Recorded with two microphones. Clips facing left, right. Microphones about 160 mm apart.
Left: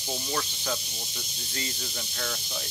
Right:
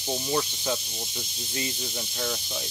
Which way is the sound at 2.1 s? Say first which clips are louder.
Right 3 dB; 15° right (ahead or behind).